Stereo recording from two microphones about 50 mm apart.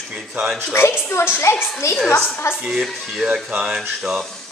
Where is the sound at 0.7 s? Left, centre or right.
Left.